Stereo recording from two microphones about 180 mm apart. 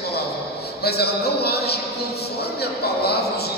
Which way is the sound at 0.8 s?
60° left (ahead or behind).